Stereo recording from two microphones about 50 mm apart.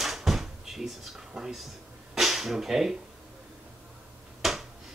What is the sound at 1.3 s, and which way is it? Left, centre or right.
Speech, centre.